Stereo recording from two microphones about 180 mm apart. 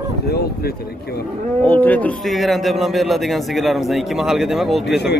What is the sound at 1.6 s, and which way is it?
Speech, 10° left (ahead or behind).